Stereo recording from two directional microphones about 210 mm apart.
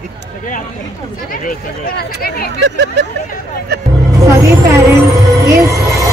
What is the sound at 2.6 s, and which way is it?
Speech, 55° right (ahead or behind).